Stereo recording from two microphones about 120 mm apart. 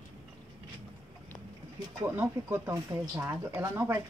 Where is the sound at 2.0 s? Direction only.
20° right (ahead or behind).